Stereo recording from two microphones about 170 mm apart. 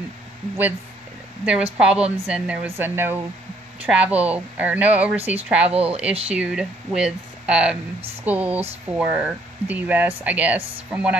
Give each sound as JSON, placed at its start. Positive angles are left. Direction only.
{"t": 1.4, "sound": "a woman's voice", "side_deg": -5}
{"t": 5.7, "sound": "speech", "side_deg": -35}
{"t": 6.2, "sound": "speech", "side_deg": -5}